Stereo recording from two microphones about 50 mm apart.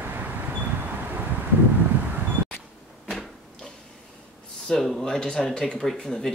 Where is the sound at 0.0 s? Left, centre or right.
Right.